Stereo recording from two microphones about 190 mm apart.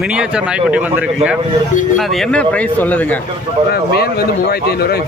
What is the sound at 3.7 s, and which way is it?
A man's voice, 55° left (ahead or behind).